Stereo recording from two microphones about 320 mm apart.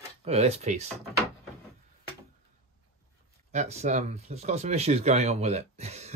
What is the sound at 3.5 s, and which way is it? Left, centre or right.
Speech, right.